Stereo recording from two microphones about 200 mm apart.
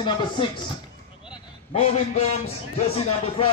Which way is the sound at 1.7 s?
35° left (ahead or behind).